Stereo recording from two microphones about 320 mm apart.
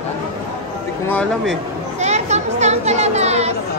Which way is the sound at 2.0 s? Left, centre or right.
Right.